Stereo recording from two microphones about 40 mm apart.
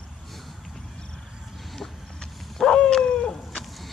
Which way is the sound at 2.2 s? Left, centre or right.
Centre.